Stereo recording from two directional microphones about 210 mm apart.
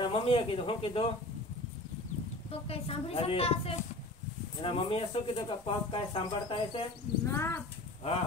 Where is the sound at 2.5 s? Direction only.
30° left (ahead or behind).